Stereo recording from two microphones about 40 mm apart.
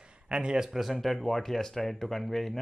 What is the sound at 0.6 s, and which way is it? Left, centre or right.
Speech, centre.